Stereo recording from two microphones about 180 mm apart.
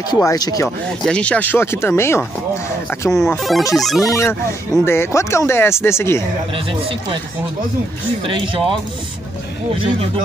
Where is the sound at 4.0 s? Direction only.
15° left (ahead or behind).